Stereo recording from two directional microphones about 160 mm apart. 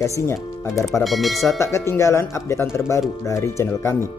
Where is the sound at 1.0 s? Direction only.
Centre (ahead or behind).